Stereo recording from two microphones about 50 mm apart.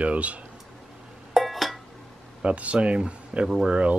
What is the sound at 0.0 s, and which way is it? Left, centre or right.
Speech, right.